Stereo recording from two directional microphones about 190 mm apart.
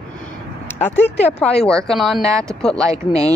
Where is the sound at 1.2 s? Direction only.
5° left (ahead or behind).